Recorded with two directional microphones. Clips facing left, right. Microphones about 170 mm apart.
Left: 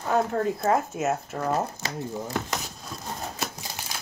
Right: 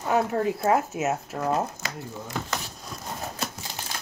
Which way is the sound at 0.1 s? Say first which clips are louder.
Even; 5° right (ahead or behind).